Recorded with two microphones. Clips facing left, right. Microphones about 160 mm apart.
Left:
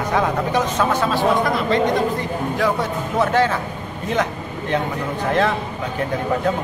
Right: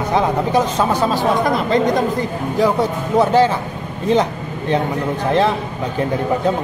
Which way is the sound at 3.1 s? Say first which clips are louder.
Right 5 dB; 30° right (ahead or behind).